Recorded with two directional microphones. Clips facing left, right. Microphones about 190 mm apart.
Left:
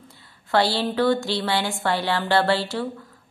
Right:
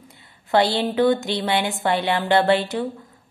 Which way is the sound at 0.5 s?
20° right (ahead or behind).